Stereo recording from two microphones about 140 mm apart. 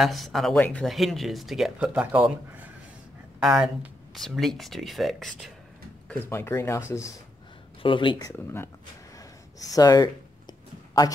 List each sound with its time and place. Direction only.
0.0 s speech: centre (ahead or behind)
6.0 s speech: 15° left (ahead or behind)
7.8 s speech: 35° left (ahead or behind)
8.2 s speech: 20° left (ahead or behind)